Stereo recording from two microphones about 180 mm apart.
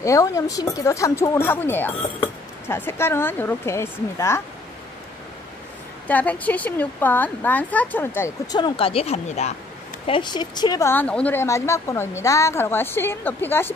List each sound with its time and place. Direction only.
0.0 s speech: 15° left (ahead or behind)
6.0 s speech: 10° left (ahead or behind)
8.5 s speech: 30° left (ahead or behind)
10.0 s speech: 25° left (ahead or behind); by 13.7 s 10° left (ahead or behind)